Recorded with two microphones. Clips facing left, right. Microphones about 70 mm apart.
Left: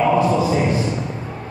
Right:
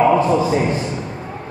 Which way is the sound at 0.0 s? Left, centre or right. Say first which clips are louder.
Right 2 dB; right.